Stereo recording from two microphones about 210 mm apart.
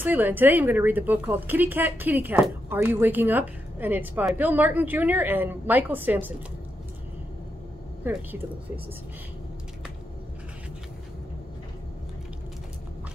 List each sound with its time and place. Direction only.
0.0 s a woman's voice: 10° right (ahead or behind)
8.0 s speech: 10° right (ahead or behind)